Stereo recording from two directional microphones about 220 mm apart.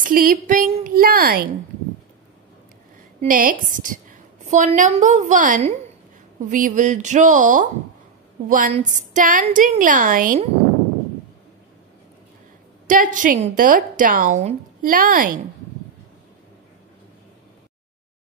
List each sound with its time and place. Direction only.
0.0 s a woman's voice: 40° right (ahead or behind)
3.2 s a woman's voice: 40° right (ahead or behind)
12.8 s a woman's voice: 35° right (ahead or behind)